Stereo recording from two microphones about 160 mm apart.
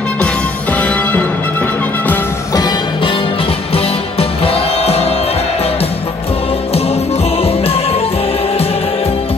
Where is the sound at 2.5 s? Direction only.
25° left (ahead or behind).